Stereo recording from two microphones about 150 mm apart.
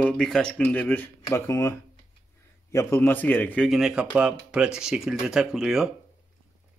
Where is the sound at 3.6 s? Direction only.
Centre (ahead or behind).